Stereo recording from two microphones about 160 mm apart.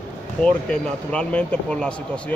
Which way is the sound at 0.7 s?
5° left (ahead or behind).